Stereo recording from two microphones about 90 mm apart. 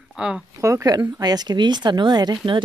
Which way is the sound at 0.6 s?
35° right (ahead or behind).